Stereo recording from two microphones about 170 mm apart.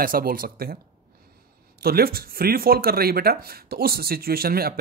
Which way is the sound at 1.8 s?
65° right (ahead or behind).